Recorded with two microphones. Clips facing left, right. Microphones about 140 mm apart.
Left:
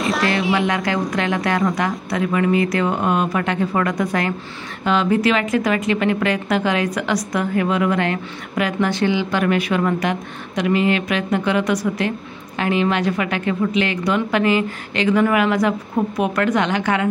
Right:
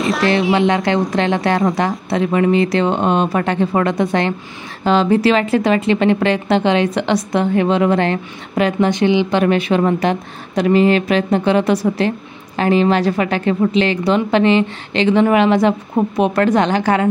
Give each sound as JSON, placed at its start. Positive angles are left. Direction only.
{"t": 0.0, "sound": "speech", "side_deg": 0}
{"t": 0.7, "sound": "a woman's voice", "side_deg": -25}